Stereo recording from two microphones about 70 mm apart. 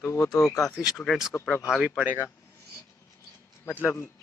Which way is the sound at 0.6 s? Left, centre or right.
Centre.